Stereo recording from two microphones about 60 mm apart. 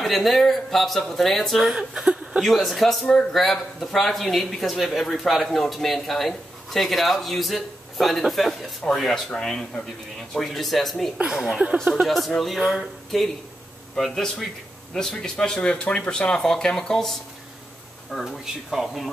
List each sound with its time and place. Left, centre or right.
0.0 s speech: centre
1.6 s speech: centre
2.4 s speech: centre